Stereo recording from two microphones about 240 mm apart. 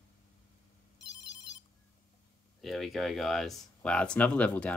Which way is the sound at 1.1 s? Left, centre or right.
Left.